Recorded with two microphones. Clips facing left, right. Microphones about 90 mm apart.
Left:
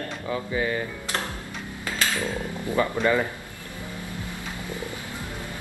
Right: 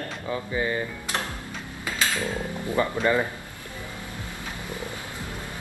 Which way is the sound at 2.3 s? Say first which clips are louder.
Even; 20° right (ahead or behind).